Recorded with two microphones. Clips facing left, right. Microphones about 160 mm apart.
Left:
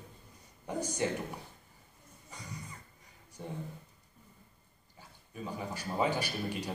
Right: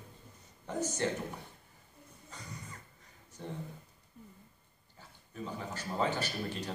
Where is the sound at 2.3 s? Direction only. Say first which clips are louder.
Left 1 dB; 10° left (ahead or behind).